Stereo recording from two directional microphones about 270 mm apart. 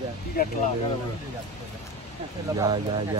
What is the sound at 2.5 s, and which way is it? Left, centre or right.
Speech, centre.